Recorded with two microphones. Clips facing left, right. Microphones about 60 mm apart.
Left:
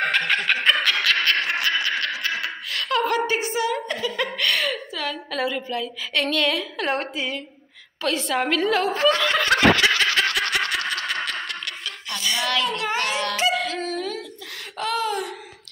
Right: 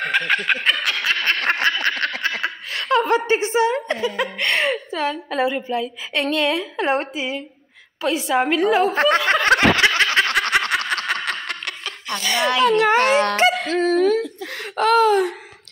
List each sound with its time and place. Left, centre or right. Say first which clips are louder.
0.1 s snicker: right 2 dB; centre
0.7 s snicker: left 2 dB; centre
1.4 s a sound: right 4 dB; right
2.4 s chuckle: right 3 dB; right
3.3 s a sound: right 5 dB; right
4.2 s a woman's voice: right 1 dB; right
8.9 s snicker: right 3 dB; right
12.6 s speech: right 9 dB; right